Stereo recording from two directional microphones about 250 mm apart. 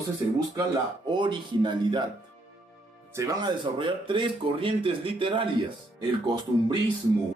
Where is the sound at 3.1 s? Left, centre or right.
Centre.